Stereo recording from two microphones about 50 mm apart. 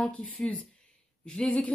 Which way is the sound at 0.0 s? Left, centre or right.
Left.